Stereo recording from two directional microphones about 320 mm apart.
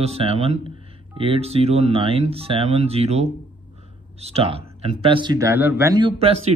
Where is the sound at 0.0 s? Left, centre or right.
Centre.